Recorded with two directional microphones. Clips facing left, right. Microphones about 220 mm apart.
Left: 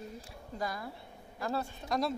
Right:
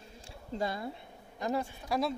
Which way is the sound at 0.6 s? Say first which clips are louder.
Right 3 dB; 25° right (ahead or behind).